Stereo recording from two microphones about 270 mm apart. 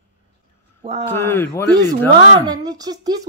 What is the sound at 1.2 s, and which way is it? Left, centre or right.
Speech, centre.